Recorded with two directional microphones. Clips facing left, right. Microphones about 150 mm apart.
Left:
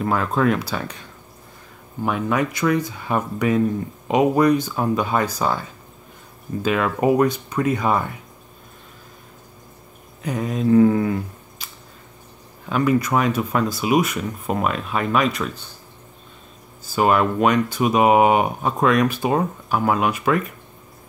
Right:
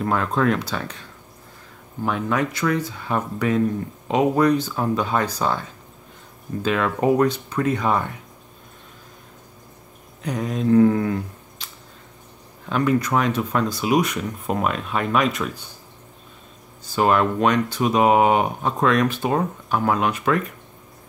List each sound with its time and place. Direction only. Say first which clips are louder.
0.0 s speech: left 1 dB; 5° left (ahead or behind)
2.0 s speech: left 1 dB; 10° left (ahead or behind)
10.2 s speech: left 1 dB; 5° left (ahead or behind)
16.8 s speech: left 1 dB; 5° left (ahead or behind)